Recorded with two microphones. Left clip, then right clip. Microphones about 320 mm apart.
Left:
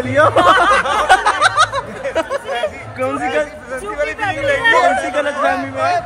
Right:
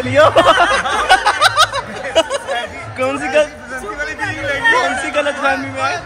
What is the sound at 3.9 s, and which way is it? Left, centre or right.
Chatter, left.